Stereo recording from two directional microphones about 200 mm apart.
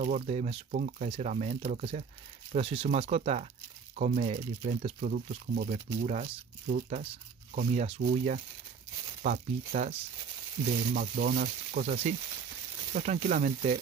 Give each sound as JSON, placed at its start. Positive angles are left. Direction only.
{"t": 0.0, "sound": "speech", "side_deg": -35}